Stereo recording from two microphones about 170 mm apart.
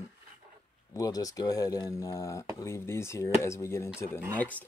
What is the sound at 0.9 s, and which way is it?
Speech, 20° left (ahead or behind).